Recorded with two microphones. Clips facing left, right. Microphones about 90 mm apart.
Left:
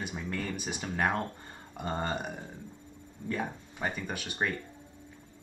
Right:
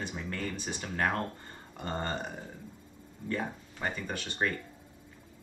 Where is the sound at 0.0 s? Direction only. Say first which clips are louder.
Left 1 dB; 10° left (ahead or behind).